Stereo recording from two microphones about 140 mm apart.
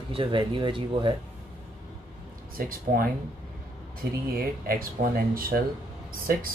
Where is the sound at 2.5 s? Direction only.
90° right.